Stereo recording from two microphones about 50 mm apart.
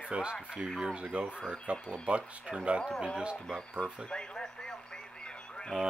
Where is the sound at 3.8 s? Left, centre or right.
Left.